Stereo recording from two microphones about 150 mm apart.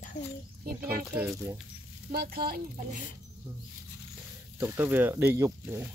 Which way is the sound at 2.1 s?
90° right.